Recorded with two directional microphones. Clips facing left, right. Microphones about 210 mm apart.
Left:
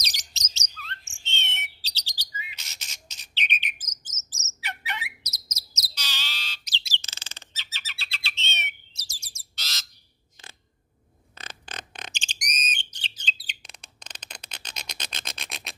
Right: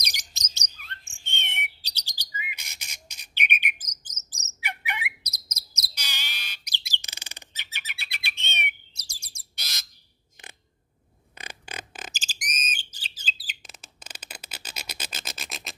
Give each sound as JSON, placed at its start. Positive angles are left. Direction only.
{"t": 0.0, "sound": "chirp", "side_deg": -15}
{"t": 0.6, "sound": "bird", "side_deg": -15}
{"t": 11.3, "sound": "bird", "side_deg": -10}